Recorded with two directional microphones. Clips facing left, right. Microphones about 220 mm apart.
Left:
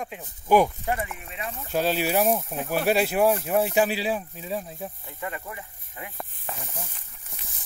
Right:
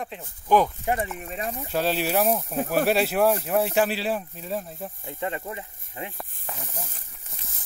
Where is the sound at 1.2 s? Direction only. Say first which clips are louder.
Right 4 dB; 40° right (ahead or behind).